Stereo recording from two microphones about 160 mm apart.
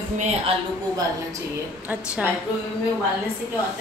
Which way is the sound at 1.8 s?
10° right (ahead or behind).